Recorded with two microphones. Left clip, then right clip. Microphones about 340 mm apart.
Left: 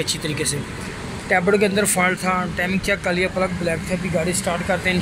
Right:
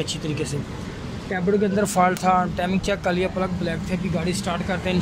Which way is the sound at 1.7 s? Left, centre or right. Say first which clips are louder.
Left 1 dB; centre.